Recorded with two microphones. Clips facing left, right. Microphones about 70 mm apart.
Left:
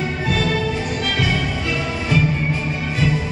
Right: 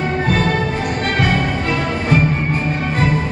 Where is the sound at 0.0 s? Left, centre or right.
Right.